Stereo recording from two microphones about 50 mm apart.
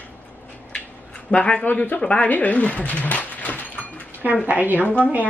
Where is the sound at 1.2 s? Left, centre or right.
Left.